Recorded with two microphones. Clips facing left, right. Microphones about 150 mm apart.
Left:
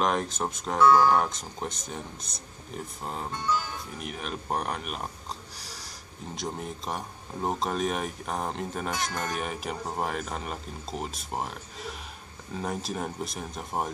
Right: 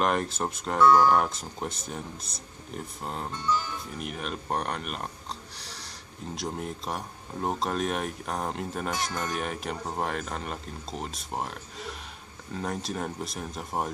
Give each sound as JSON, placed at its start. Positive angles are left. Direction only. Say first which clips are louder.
{"t": 0.0, "sound": "speech", "louder": "even", "side_deg": 0}
{"t": 5.6, "sound": "a sound", "louder": "even", "side_deg": 5}
{"t": 6.3, "sound": "speech", "louder": "right 1 dB", "side_deg": 0}